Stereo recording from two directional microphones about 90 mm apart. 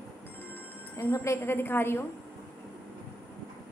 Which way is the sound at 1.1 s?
30° left (ahead or behind).